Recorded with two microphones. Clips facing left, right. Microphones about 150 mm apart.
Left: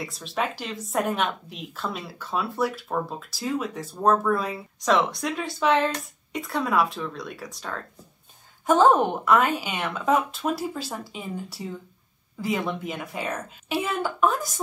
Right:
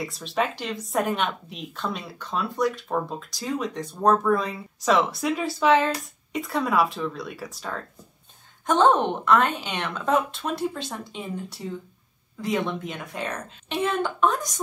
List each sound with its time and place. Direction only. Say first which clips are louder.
0.0 s speech: right 2 dB; centre (ahead or behind)